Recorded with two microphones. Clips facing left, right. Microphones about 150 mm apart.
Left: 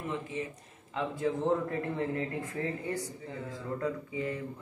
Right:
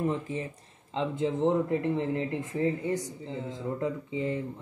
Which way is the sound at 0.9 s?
20° right (ahead or behind).